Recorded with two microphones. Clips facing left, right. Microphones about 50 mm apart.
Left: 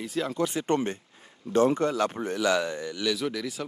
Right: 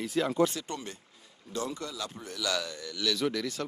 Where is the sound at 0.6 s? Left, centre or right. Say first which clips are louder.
Left 12 dB; left.